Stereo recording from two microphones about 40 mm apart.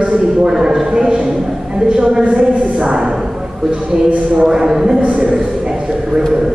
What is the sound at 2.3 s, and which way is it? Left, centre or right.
Speech, right.